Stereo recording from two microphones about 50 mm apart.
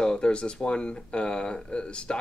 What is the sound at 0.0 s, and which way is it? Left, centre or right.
Speech, centre.